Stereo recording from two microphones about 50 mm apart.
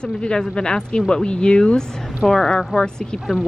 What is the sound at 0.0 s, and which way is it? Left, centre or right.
Speech, centre.